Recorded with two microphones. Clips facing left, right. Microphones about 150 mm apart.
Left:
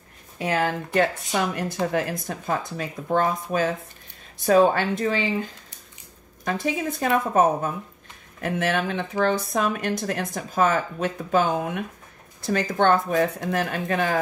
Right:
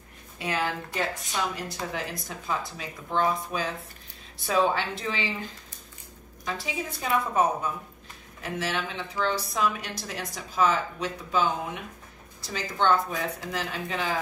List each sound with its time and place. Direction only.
0.4 s speech: 50° left (ahead or behind)
6.4 s a woman's voice: 50° left (ahead or behind)